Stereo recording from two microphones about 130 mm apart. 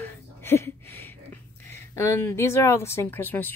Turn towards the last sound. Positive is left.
turn(degrees=15)  # may be behind; listen again after turning